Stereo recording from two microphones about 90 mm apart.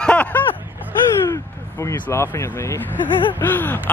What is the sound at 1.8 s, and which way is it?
Speech, 35° left (ahead or behind).